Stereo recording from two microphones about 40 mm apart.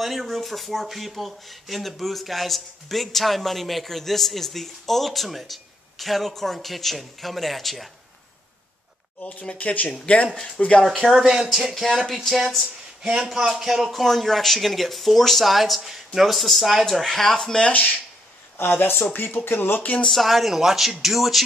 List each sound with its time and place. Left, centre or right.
0.0 s speech: centre
9.2 s speech: left
10.8 s speech: centre
13.0 s speech: centre
17.6 s speech: left
18.6 s speech: left
19.1 s speech: left
20.1 s speech: centre